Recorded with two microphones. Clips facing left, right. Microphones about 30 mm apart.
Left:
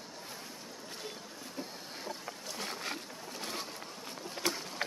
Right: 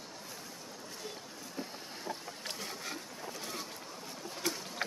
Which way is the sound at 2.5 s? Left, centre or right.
Left.